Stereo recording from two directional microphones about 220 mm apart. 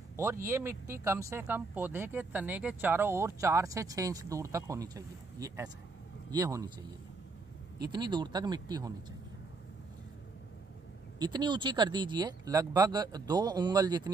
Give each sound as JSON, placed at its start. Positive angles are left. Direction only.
{"t": 0.1, "sound": "a sound", "side_deg": -10}
{"t": 0.5, "sound": "speech", "side_deg": -10}
{"t": 7.8, "sound": "speech", "side_deg": -20}
{"t": 11.1, "sound": "speech", "side_deg": -20}